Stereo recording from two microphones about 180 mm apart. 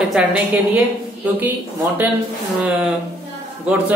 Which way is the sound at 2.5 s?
10° right (ahead or behind).